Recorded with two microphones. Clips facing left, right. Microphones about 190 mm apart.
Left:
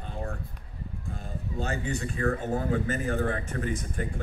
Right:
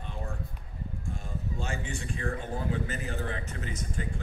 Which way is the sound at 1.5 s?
40° left (ahead or behind).